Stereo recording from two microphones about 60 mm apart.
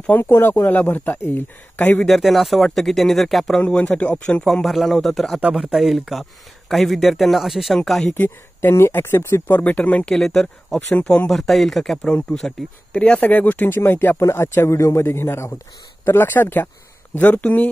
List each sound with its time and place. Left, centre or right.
0.2 s speech: left
0.7 s speech: left
1.8 s speech: left
2.0 s speech: centre
3.6 s speech: left
4.5 s speech: centre
5.5 s speech: centre
8.1 s speech: left
9.5 s speech: left
10.0 s speech: centre
12.9 s speech: centre
13.3 s speech: left